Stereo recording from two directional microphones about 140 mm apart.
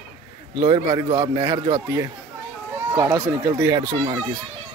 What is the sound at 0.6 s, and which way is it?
A man's voice, 30° right (ahead or behind).